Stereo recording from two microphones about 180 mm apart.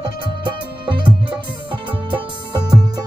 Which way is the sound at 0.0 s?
30° right (ahead or behind).